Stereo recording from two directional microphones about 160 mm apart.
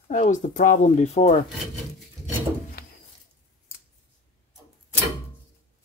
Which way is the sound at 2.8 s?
70° left (ahead or behind).